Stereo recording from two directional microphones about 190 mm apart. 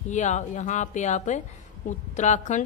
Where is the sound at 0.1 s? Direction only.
40° left (ahead or behind).